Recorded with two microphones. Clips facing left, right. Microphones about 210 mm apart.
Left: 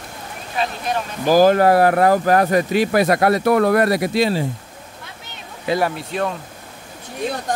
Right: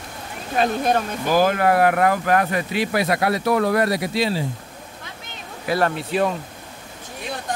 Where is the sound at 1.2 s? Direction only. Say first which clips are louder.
Left 6 dB; 35° left (ahead or behind).